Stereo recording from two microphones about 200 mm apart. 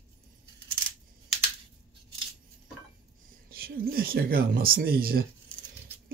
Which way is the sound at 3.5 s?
50° right (ahead or behind).